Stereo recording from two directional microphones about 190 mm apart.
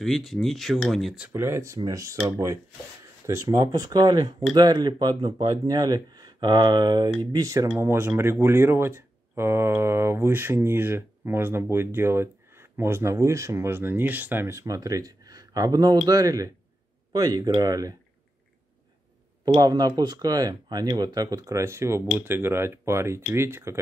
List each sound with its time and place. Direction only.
0.0 s speech: centre (ahead or behind); by 17.9 s 20° right (ahead or behind)
19.4 s speech: 20° right (ahead or behind)